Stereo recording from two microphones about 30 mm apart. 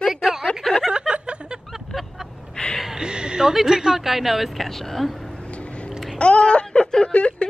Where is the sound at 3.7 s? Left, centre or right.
Centre.